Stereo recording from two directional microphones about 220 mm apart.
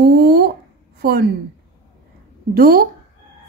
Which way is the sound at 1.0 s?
45° right (ahead or behind).